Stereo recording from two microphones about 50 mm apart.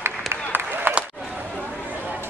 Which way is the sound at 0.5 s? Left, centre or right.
Right.